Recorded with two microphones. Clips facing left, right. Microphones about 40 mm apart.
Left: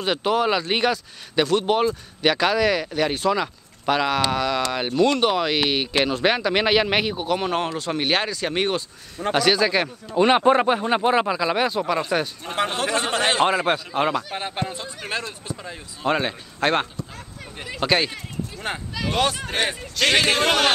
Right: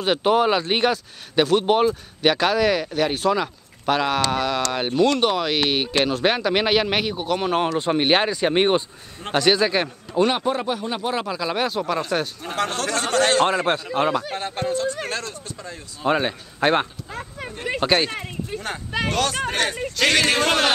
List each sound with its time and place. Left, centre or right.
0.2 s speech: centre
5.0 s speech: centre
7.9 s speech: centre
9.3 s speech: centre
10.2 s speech: left
10.5 s speech: left
11.1 s speech: left
11.3 s speech: centre
12.5 s speech: centre
14.3 s speech: centre
16.0 s speech: centre
17.8 s speech: centre
18.9 s speech: right
19.5 s speech: centre